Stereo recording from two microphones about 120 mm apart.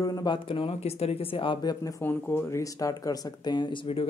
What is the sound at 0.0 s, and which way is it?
Speech, 35° left (ahead or behind).